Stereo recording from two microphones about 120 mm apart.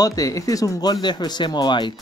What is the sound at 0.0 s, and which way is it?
Speech, 30° left (ahead or behind).